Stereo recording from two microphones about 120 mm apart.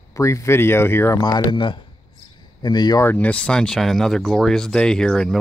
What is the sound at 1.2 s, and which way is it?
Speech, 40° left (ahead or behind).